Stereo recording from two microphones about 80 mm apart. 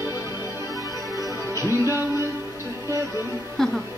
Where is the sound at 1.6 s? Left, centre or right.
Right.